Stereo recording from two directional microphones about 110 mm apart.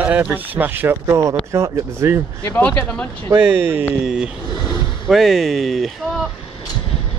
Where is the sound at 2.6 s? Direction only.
10° left (ahead or behind).